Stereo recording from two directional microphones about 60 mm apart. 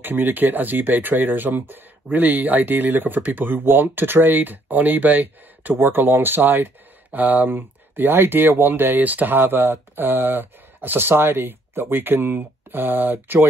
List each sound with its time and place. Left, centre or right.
0.0 s speech: right